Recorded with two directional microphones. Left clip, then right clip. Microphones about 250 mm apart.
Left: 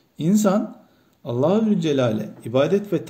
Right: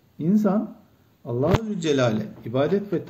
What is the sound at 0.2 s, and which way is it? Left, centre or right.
A man's voice, left.